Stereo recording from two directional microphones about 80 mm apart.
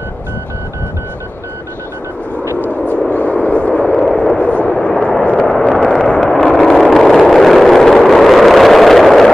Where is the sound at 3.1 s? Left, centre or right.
Centre.